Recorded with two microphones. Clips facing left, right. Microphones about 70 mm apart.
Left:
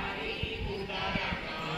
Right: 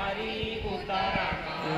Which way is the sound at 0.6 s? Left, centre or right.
Right.